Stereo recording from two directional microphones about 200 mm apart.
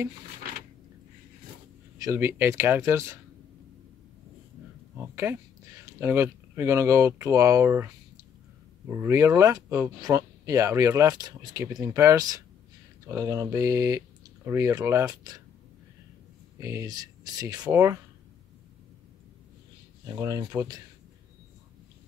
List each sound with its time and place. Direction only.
2.0 s speech: 15° right (ahead or behind)
4.9 s speech: 10° right (ahead or behind)
16.5 s speech: 15° right (ahead or behind)
20.2 s speech: 15° right (ahead or behind)